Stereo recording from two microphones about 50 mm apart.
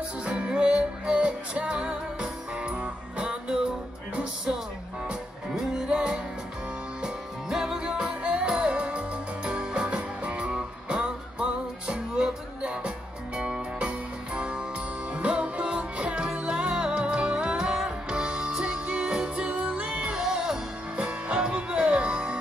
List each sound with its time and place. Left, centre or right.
0.2 s music: right
20.9 s music: right